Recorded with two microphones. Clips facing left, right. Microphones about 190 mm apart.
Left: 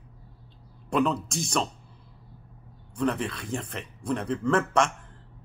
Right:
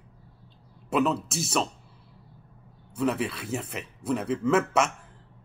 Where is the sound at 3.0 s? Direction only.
5° right (ahead or behind).